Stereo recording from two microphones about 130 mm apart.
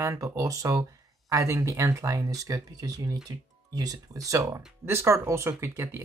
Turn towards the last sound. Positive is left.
turn(degrees=-20)  # may be behind; listen again after turning